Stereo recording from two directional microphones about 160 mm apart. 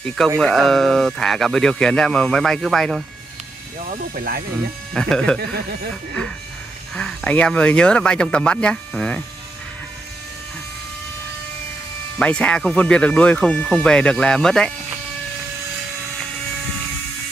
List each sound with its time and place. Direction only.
0.0 s speech: centre (ahead or behind)
3.9 s speech: 60° right (ahead or behind)
4.9 s speech: 5° left (ahead or behind)
5.4 s a sound: 80° right
7.0 s speech: 5° left (ahead or behind)
12.2 s speech: 5° left (ahead or behind)